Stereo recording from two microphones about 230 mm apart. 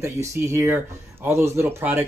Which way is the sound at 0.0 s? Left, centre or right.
Centre.